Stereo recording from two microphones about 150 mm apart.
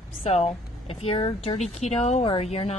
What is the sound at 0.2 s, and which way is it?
Speech, 45° left (ahead or behind).